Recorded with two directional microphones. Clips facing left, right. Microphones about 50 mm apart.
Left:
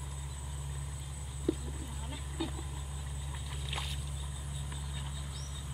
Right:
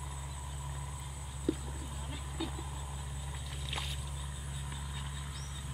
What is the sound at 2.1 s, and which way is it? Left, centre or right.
Vehicle, centre.